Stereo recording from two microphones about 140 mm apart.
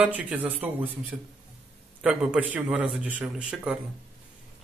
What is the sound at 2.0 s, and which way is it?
A man's voice, 10° right (ahead or behind).